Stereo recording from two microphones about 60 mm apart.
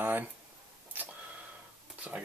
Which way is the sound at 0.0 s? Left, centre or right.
Right.